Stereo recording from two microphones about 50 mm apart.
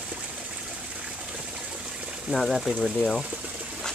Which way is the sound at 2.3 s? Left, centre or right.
Centre.